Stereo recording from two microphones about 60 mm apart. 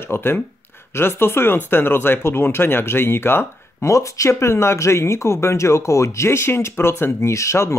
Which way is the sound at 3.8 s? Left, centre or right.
Left.